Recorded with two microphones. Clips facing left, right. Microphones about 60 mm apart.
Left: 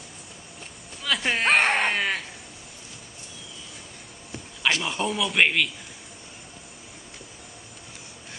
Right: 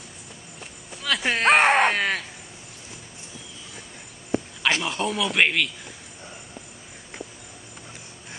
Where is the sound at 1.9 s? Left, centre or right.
Centre.